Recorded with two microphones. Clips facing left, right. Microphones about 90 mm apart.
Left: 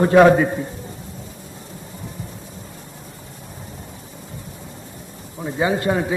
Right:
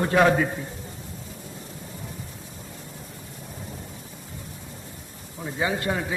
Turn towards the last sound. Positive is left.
turn(degrees=25)  # may be behind; listen again after turning